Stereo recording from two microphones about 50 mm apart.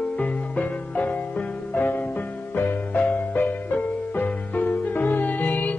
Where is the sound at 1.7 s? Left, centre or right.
Left.